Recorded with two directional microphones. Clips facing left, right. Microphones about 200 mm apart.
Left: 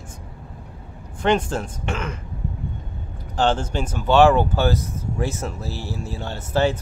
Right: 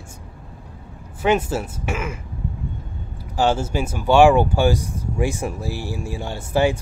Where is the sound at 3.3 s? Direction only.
10° right (ahead or behind).